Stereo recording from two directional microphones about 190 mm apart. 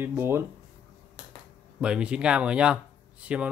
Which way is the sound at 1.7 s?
5° right (ahead or behind).